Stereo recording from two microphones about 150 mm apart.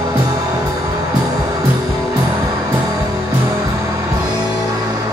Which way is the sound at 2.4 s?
20° right (ahead or behind).